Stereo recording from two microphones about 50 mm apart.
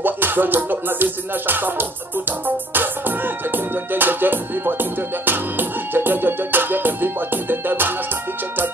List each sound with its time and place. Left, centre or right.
0.0 s music: right